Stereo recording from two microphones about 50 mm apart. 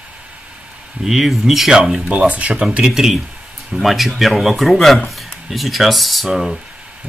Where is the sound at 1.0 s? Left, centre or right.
Centre.